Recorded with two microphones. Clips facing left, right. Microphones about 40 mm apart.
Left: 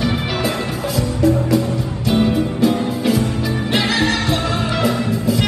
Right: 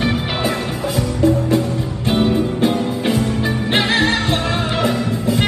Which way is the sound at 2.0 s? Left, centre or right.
Right.